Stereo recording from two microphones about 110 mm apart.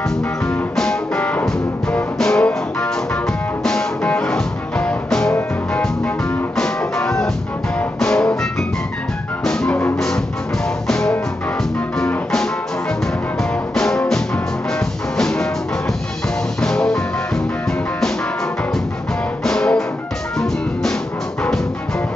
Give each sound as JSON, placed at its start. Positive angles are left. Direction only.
{"t": 0.7, "sound": "music", "side_deg": 10}
{"t": 6.5, "sound": "music", "side_deg": 10}
{"t": 9.4, "sound": "music", "side_deg": 5}
{"t": 9.9, "sound": "music", "side_deg": 5}
{"t": 16.6, "sound": "music", "side_deg": 5}
{"t": 19.4, "sound": "music", "side_deg": 5}